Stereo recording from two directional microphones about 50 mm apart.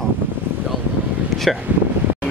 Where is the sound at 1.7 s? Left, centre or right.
Right.